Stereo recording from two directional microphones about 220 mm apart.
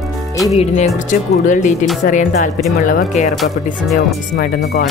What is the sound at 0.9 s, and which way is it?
Speech, 35° left (ahead or behind).